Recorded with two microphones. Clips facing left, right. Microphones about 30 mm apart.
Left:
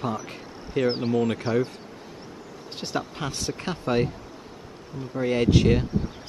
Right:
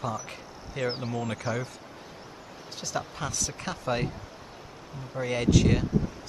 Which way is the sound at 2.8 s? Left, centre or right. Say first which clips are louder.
Left 3 dB; left.